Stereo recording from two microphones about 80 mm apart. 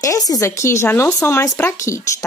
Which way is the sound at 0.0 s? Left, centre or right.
Left.